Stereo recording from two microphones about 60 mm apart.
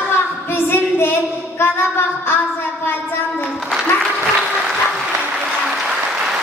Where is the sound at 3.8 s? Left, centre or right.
Centre.